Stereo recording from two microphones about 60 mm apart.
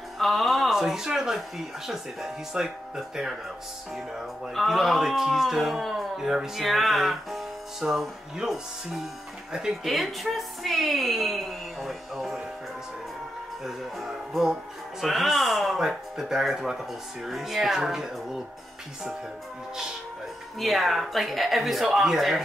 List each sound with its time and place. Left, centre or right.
0.2 s a sound: centre
2.6 s speech: centre
4.6 s speech: centre
9.8 s a woman's voice: centre
13.7 s speech: centre
20.5 s speech: centre